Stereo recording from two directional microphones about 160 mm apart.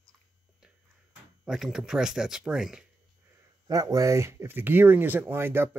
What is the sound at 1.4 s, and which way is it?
Speech, 5° right (ahead or behind).